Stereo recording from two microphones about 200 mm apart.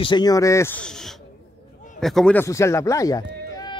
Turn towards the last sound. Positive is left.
turn(degrees=20)  # may be behind; listen again after turning